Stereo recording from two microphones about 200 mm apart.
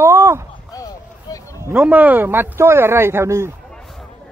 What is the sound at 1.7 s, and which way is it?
Speech, 5° right (ahead or behind).